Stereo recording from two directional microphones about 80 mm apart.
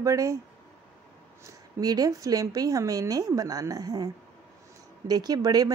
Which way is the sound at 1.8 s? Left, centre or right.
Right.